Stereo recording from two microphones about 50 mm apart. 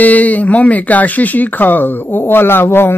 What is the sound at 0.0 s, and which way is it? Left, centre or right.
Speech, left.